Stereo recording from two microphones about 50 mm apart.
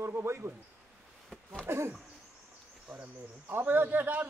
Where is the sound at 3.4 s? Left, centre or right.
Right.